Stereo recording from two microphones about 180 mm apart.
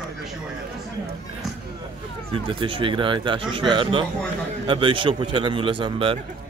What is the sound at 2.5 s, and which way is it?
A man's voice, 30° right (ahead or behind).